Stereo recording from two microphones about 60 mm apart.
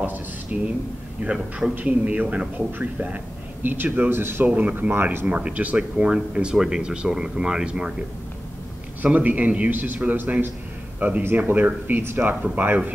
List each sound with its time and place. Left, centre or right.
0.0 s a man's voice: right
4.5 s a man's voice: right
4.9 s speech: right
5.2 s speech: right
9.0 s a man's voice: right